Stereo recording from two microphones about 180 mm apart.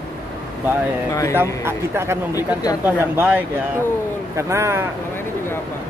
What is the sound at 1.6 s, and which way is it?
Speech, 15° right (ahead or behind).